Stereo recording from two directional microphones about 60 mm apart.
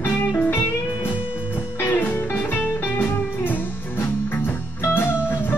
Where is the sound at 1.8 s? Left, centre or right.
Left.